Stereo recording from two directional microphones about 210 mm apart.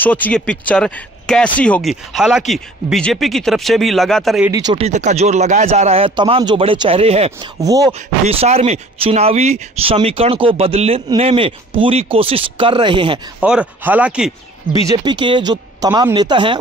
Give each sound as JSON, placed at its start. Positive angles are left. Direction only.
{"t": 0.0, "sound": "speech", "side_deg": 5}
{"t": 4.5, "sound": "speech", "side_deg": -20}
{"t": 4.8, "sound": "speech", "side_deg": -35}
{"t": 7.6, "sound": "speech", "side_deg": -15}
{"t": 8.3, "sound": "speech", "side_deg": -30}
{"t": 13.4, "sound": "speech", "side_deg": -5}
{"t": 14.7, "sound": "speech", "side_deg": -20}